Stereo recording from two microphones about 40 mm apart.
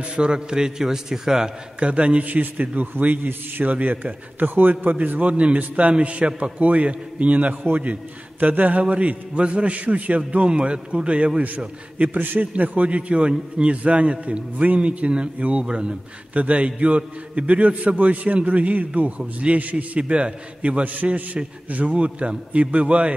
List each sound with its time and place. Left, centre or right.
0.1 s a man's voice: right
1.8 s a man's voice: right
2.6 s a man's voice: right
11.4 s a man's voice: right
15.6 s speech: right
16.3 s a man's voice: right
20.8 s a man's voice: right